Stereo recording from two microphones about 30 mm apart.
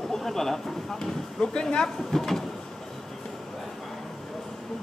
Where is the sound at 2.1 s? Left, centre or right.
Centre.